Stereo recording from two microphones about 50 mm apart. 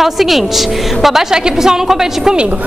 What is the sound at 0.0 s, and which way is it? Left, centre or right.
A woman's voice, centre.